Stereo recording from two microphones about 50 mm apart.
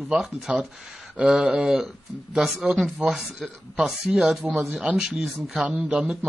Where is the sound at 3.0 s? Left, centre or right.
Right.